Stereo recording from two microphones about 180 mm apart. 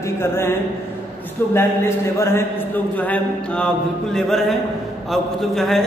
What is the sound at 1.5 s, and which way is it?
A man's voice, 15° left (ahead or behind).